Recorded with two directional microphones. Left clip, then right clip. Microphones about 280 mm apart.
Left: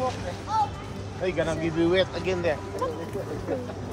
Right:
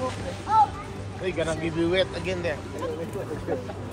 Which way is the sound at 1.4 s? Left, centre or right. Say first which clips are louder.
Left 1 dB; left.